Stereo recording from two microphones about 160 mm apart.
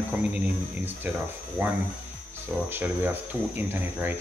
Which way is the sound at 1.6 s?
15° right (ahead or behind).